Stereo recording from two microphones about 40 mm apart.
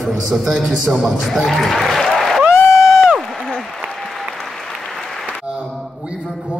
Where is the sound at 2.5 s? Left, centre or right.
Left.